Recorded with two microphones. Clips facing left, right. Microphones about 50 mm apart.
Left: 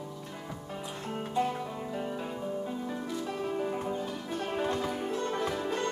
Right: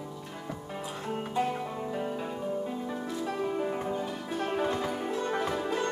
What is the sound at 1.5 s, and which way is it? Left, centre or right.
Music, centre.